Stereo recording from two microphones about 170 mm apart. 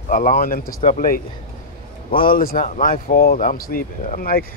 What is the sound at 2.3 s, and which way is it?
Speech, 60° left (ahead or behind).